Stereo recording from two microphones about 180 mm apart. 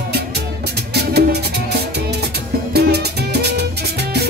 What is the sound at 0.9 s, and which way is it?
Music, 65° right (ahead or behind).